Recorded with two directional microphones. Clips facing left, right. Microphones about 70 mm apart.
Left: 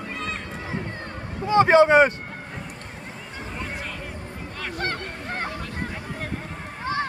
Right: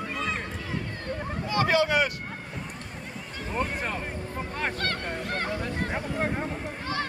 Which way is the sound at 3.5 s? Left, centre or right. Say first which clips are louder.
Right 5 dB; right.